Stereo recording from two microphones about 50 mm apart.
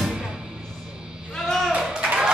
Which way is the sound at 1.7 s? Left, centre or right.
Right.